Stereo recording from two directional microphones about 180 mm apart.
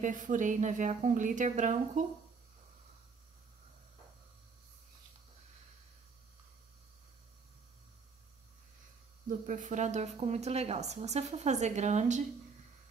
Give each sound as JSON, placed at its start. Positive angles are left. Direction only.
{"t": 0.0, "sound": "speech", "side_deg": -45}
{"t": 9.5, "sound": "a woman's voice", "side_deg": -45}